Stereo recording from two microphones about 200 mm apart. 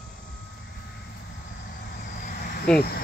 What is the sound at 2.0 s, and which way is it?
Vehicle, 45° left (ahead or behind).